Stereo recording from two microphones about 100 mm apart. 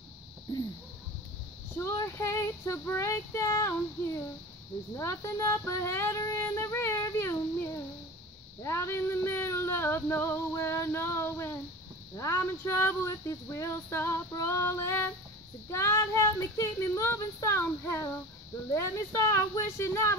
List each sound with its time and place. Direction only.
1.8 s female singing: 25° left (ahead or behind)